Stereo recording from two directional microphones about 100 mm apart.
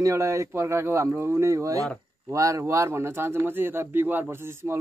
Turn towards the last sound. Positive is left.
turn(degrees=-25)  # may be behind; listen again after turning